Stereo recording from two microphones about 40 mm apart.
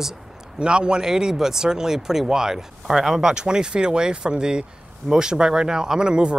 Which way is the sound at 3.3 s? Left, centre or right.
Centre.